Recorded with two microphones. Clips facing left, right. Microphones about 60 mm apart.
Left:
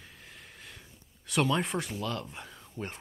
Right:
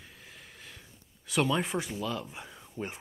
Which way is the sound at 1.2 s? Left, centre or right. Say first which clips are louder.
Even; centre.